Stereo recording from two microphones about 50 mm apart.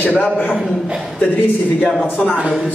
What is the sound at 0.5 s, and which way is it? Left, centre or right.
Speech, centre.